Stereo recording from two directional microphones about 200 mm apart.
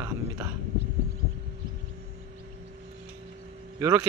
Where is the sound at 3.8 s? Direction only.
15° right (ahead or behind).